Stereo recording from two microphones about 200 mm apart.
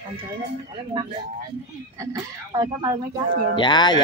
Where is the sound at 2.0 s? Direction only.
15° right (ahead or behind).